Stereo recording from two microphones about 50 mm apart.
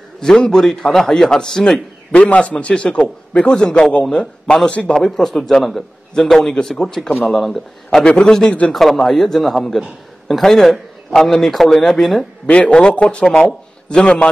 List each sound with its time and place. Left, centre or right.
0.2 s a man's voice: centre
2.2 s a man's voice: left
4.9 s a man's voice: centre
8.0 s a man's voice: centre
12.4 s a man's voice: left